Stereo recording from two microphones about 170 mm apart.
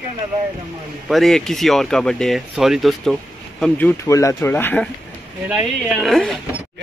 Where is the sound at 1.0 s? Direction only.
Centre (ahead or behind).